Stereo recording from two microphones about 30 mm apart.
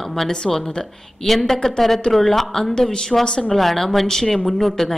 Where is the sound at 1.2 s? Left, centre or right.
Centre.